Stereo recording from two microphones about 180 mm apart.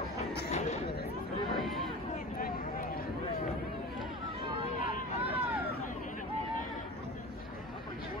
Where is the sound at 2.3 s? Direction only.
55° left (ahead or behind).